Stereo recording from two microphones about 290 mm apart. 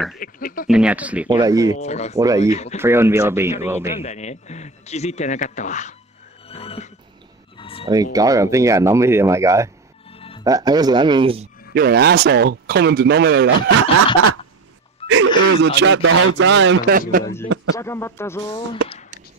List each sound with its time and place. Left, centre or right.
0.2 s speech: left
0.7 s speech: centre
1.8 s a man's voice: left
2.1 s speech: centre
2.5 s a man's voice: left
2.8 s speech: centre
4.0 s a man's voice: left
7.5 s a sound: centre
7.8 s speech: centre
10.1 s music: centre
10.4 s speech: centre
11.7 s speech: right
15.0 s speech: right
17.2 s speech: centre